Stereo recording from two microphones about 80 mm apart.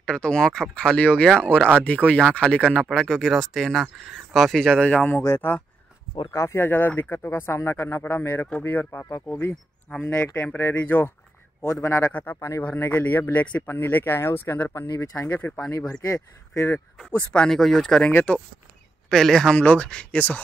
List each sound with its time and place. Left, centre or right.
0.0 s speech: centre; by 9.2 s left
10.2 s speech: centre
11.8 s speech: left
12.1 s speech: left
12.4 s speech: left
12.7 s speech: left
16.0 s speech: left
17.3 s speech: centre
17.6 s speech: centre
18.1 s speech: centre
19.0 s speech: centre
19.6 s speech: centre